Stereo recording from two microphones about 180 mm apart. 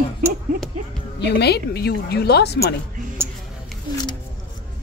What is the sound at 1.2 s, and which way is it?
A woman's voice, 70° left (ahead or behind).